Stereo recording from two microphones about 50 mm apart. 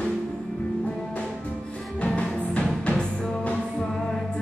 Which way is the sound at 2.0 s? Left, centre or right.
Left.